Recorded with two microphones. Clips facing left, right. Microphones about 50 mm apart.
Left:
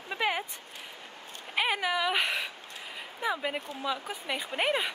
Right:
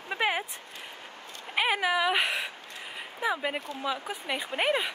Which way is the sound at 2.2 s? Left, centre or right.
Right.